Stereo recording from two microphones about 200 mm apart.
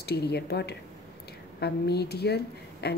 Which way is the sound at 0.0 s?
55° left (ahead or behind).